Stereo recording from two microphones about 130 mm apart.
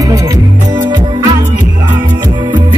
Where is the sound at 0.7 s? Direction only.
35° right (ahead or behind).